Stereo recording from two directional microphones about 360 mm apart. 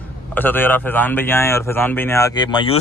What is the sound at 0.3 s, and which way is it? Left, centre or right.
Speech, centre.